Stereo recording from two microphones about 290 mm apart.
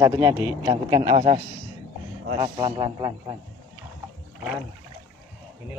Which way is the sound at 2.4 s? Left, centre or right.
Centre.